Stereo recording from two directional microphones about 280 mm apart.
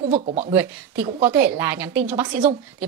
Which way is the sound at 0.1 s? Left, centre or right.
Right.